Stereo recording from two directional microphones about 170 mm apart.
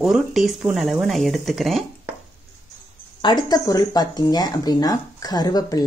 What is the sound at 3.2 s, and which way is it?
Speech, 25° left (ahead or behind).